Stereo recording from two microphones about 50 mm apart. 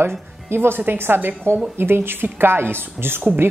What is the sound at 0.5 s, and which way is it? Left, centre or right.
Speech, right.